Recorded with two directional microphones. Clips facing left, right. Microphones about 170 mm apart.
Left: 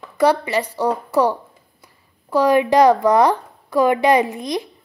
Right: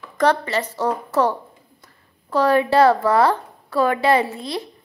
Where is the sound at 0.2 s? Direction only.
10° left (ahead or behind).